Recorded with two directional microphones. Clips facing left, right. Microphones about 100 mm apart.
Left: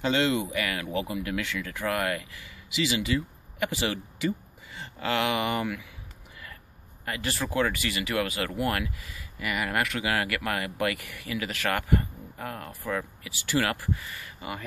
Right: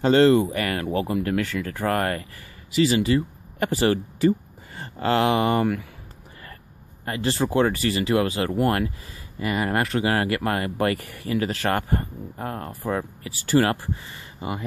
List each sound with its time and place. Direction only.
0.0 s speech: 40° right (ahead or behind)
7.1 s speech: 30° right (ahead or behind)